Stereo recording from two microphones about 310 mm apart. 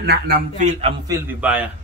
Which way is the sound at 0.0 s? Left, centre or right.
Right.